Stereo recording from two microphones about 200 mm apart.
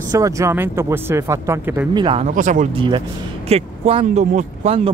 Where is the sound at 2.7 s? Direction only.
25° right (ahead or behind).